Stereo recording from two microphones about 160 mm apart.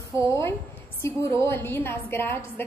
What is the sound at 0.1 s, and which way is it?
A woman's voice, 15° left (ahead or behind).